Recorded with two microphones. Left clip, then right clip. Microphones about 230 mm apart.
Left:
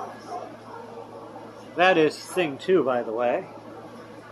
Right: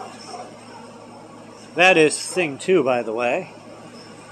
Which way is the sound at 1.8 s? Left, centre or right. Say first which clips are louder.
Right 5 dB; right.